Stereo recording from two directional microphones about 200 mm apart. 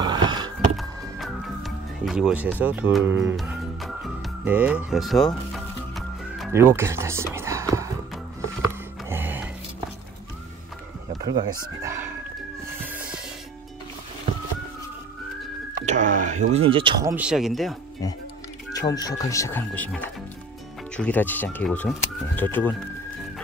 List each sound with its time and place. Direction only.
0.0 s a sound: 20° right (ahead or behind)
0.7 s music: centre (ahead or behind)
6.5 s speech: 10° right (ahead or behind)
7.3 s whispering: 15° right (ahead or behind)
9.1 s music: 10° right (ahead or behind)
11.2 s speech: 20° right (ahead or behind)
12.8 s music: 5° right (ahead or behind)
15.8 s speech: 35° right (ahead or behind)
17.0 s speech: 5° right (ahead or behind)
18.7 s speech: 20° left (ahead or behind)